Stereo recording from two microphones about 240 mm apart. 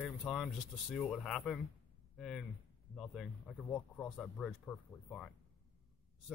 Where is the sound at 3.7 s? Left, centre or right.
Centre.